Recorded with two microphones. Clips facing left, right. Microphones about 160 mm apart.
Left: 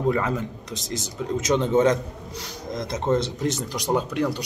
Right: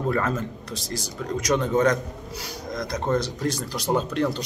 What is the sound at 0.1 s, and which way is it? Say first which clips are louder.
Speech: left 1 dB; 15° left (ahead or behind).